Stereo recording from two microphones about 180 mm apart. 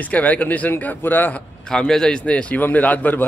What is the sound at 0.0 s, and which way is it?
Speech, 10° left (ahead or behind).